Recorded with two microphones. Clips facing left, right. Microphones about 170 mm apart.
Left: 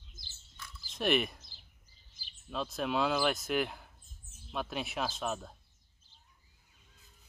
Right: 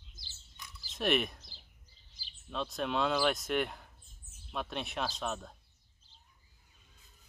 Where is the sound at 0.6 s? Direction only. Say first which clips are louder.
Left 2 dB; 15° right (ahead or behind).